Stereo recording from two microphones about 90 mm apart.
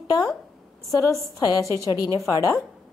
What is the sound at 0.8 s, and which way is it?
Speech, 40° left (ahead or behind).